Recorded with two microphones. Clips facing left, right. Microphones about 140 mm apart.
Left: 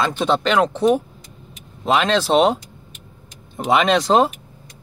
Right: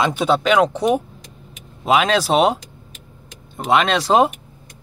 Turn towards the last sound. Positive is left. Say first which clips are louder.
# even
turn(degrees=-5)  # may be behind; listen again after turning